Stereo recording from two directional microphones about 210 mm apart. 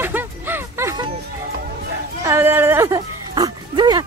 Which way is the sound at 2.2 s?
10° right (ahead or behind).